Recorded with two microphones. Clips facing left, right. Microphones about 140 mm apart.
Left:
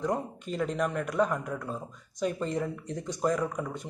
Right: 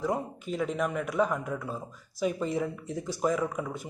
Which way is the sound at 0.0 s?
5° right (ahead or behind).